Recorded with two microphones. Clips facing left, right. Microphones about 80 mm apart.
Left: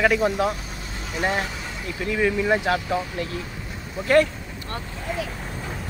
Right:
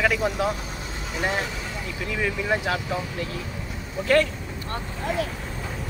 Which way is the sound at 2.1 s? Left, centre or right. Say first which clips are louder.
Left 4 dB; centre.